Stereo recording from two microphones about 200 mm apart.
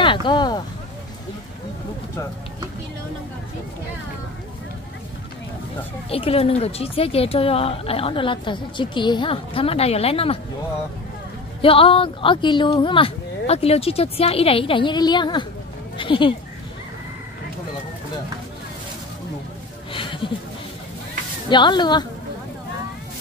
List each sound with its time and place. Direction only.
0.0 s speech: 25° left (ahead or behind)
6.0 s speech: 30° left (ahead or behind)
11.6 s speech: 25° left (ahead or behind)
19.9 s a sound: 25° left (ahead or behind)
21.5 s speech: 20° left (ahead or behind)